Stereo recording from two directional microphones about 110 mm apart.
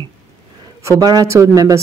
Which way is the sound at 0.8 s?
30° right (ahead or behind).